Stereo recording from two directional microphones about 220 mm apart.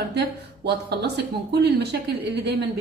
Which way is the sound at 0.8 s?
50° right (ahead or behind).